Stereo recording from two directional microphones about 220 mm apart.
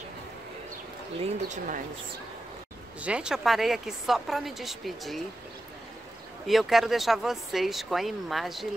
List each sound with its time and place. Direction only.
1.2 s speech: 35° right (ahead or behind)
3.0 s speech: 5° right (ahead or behind)
6.4 s speech: centre (ahead or behind)